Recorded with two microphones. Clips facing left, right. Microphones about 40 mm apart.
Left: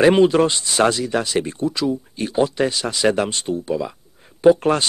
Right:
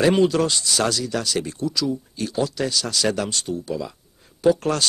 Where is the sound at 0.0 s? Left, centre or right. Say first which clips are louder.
Left 4 dB; left.